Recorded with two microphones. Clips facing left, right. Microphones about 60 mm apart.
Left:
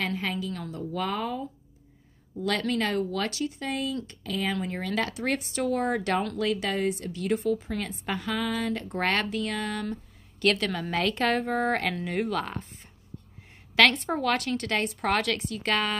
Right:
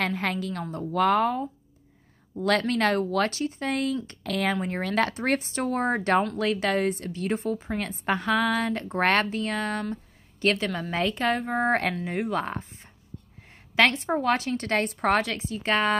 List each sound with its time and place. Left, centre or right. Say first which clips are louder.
0.0 s a woman's voice: right 3 dB; right
3.7 s a woman's voice: right 4 dB; right
4.6 s speech: right 4 dB; right
10.4 s a woman's voice: even; right
11.1 s speech: even; centre
12.3 s a woman's voice: right 2 dB; right
13.9 s speech: right 3 dB; centre
14.2 s a woman's voice: right 2 dB; right
14.6 s speech: right 3 dB; right
15.2 s a woman's voice: even; right